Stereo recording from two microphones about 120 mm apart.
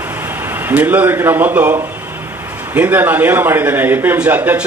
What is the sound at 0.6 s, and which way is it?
A man's voice, 15° right (ahead or behind).